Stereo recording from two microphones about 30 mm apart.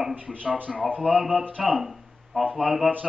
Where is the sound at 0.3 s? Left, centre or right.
Centre.